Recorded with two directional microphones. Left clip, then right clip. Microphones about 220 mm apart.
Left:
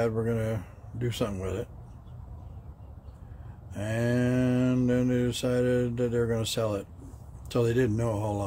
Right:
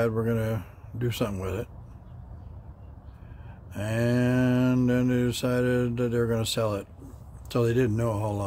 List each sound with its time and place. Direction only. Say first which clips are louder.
0.0 s mantra: right 2 dB; 15° right (ahead or behind)
3.7 s mantra: right 2 dB; 15° right (ahead or behind)